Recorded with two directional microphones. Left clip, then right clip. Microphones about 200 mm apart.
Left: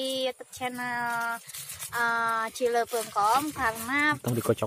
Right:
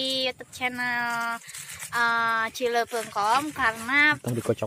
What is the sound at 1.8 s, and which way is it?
Speech, 5° right (ahead or behind).